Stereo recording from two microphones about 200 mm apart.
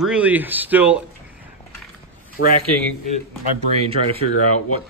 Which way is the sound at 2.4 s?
65° left (ahead or behind).